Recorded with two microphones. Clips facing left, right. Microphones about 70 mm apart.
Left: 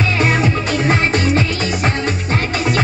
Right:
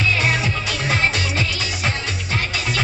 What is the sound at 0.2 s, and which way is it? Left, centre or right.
Music, left.